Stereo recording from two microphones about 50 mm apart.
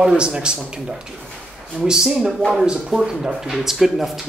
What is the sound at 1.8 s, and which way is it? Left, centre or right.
Speech, centre.